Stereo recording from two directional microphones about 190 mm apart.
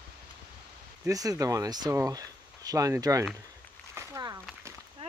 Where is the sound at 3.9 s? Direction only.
15° right (ahead or behind).